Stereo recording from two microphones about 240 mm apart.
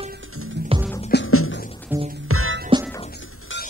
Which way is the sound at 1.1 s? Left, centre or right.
Left.